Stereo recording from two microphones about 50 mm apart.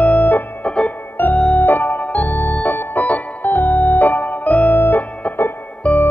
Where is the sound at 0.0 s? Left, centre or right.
Left.